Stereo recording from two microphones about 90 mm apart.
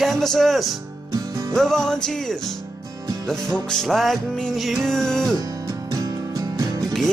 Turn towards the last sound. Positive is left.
turn(degrees=-40)  # may be behind; listen again after turning